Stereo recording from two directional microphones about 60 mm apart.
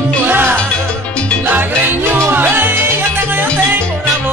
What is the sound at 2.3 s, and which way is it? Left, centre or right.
Music, right.